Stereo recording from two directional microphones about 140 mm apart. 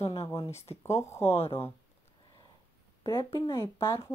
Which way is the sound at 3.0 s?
20° left (ahead or behind).